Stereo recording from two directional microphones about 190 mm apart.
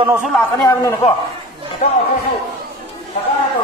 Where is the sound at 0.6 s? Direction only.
20° left (ahead or behind).